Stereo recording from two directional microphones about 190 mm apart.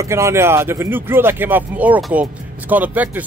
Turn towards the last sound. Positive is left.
turn(degrees=-10)  # may be behind; listen again after turning